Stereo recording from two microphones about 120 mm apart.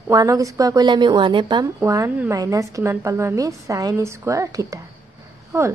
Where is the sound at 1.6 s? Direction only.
25° right (ahead or behind).